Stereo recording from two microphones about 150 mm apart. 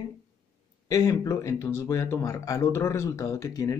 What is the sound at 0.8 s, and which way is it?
Speech, 25° left (ahead or behind).